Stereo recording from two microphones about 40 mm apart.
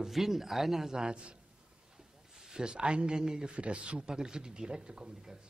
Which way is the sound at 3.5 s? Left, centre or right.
Right.